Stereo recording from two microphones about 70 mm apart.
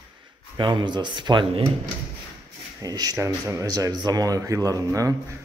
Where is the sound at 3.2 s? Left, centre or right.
Right.